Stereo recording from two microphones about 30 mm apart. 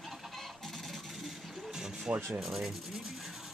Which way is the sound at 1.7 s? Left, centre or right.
Centre.